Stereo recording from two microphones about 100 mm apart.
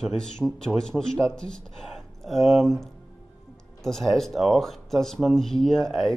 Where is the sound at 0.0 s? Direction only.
5° left (ahead or behind).